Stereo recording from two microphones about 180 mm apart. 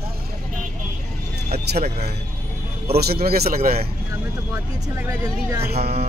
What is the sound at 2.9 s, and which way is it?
Speech, 60° right (ahead or behind).